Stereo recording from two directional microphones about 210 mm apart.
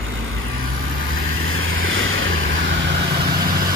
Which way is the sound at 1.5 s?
70° right (ahead or behind).